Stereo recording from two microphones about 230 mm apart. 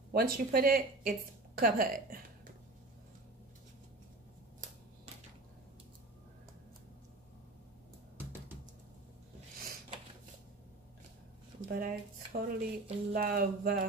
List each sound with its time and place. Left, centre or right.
0.1 s speech: right
11.7 s speech: right